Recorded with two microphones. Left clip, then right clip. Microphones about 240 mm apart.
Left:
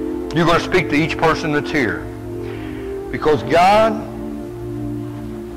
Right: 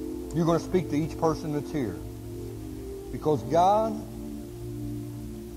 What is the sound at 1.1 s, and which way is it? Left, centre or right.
Speech, left.